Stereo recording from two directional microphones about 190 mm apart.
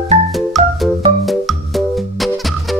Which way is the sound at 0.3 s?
Centre (ahead or behind).